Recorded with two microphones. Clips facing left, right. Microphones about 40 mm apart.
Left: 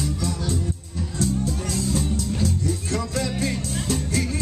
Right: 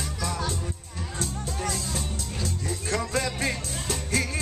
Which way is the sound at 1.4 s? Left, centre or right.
Right.